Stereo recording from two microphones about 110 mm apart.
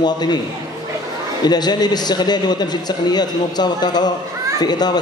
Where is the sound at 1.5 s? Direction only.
40° left (ahead or behind).